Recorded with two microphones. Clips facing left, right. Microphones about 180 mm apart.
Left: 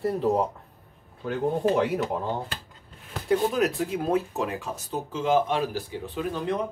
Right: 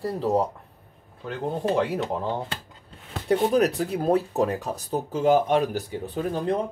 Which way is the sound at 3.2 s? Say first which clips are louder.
Right 3 dB; 40° right (ahead or behind).